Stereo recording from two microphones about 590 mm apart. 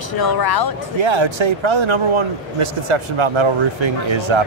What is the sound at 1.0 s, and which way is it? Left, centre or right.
Speech, right.